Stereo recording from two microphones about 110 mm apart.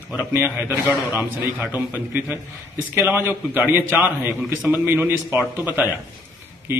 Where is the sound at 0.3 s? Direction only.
15° right (ahead or behind).